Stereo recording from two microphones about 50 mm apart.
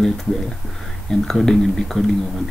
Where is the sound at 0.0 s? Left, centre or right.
Centre.